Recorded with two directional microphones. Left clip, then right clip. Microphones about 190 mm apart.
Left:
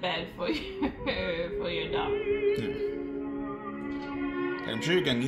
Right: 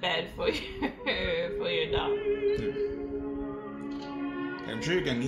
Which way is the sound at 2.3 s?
30° left (ahead or behind).